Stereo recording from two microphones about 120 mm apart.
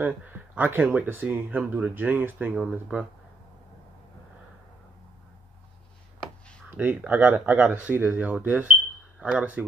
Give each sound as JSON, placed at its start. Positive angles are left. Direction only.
{"t": 0.0, "sound": "speech", "side_deg": -15}
{"t": 6.8, "sound": "speech", "side_deg": -15}